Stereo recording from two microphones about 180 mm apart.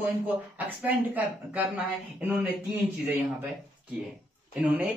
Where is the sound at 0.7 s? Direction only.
10° right (ahead or behind).